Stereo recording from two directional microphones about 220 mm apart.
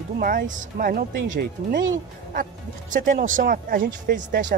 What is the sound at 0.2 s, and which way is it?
Speech, 40° right (ahead or behind).